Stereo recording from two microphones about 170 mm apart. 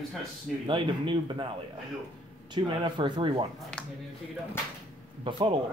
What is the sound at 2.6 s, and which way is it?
Speech, 30° right (ahead or behind).